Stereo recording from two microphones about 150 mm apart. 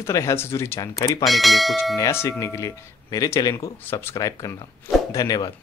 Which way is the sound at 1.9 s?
20° left (ahead or behind).